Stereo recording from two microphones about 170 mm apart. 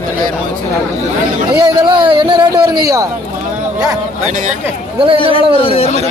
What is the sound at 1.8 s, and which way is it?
Speech, 30° right (ahead or behind).